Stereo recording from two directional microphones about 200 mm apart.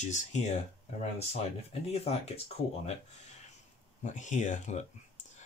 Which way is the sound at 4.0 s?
40° left (ahead or behind).